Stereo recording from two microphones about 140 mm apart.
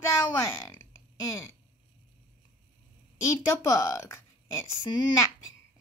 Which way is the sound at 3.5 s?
20° left (ahead or behind).